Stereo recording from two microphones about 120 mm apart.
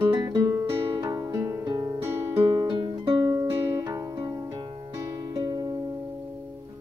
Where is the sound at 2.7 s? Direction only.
40° right (ahead or behind).